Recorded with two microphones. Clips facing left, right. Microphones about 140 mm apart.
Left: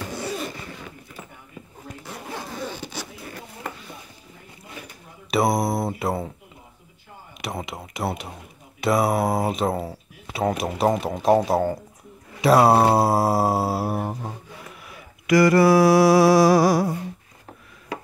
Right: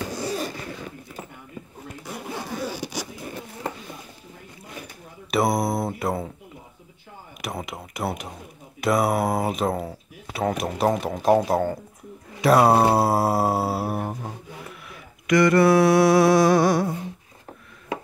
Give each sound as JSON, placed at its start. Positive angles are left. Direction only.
{"t": 0.1, "sound": "a sound", "side_deg": -40}
{"t": 2.2, "sound": "zipper", "side_deg": -5}
{"t": 5.3, "sound": "mantra", "side_deg": 0}
{"t": 7.4, "sound": "speech", "side_deg": 0}
{"t": 12.4, "sound": "mantra", "side_deg": 0}
{"t": 13.0, "sound": "speech", "side_deg": 0}
{"t": 14.9, "sound": "a sound", "side_deg": 5}